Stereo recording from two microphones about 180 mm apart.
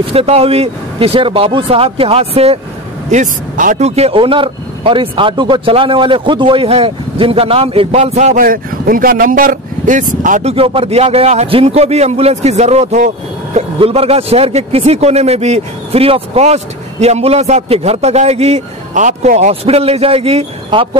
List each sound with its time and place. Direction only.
0.0 s speech: 30° right (ahead or behind)
3.1 s speech: 45° right (ahead or behind)
10.5 s speech: 30° right (ahead or behind)